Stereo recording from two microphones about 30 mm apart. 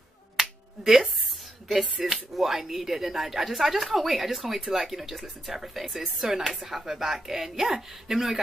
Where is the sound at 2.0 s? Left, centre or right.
Centre.